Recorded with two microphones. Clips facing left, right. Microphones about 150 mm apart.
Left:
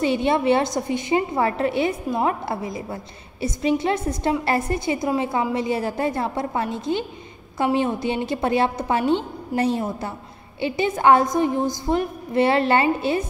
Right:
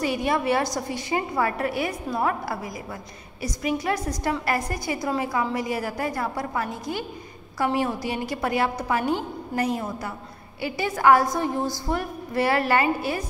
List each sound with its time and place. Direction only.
0.0 s a woman's voice: 25° left (ahead or behind)